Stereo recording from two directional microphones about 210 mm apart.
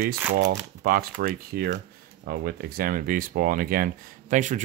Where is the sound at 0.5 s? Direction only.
45° right (ahead or behind).